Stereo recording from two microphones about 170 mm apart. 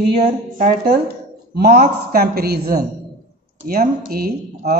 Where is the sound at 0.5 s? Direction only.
55° right (ahead or behind).